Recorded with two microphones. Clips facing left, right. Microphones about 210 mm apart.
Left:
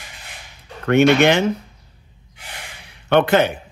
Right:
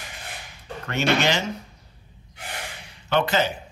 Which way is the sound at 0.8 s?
60° left (ahead or behind).